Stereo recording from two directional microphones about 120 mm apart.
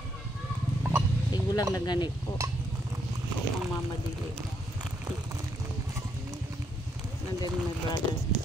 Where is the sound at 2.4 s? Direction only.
25° right (ahead or behind).